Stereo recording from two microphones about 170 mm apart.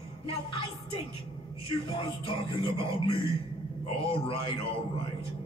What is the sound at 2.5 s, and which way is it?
Speech, 30° left (ahead or behind).